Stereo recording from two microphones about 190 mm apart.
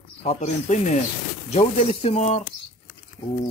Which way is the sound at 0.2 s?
35° left (ahead or behind).